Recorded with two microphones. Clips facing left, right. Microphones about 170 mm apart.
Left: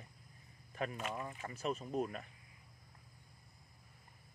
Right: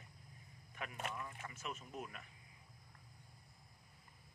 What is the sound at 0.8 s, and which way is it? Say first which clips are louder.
Speech: left 5 dB; 40° left (ahead or behind).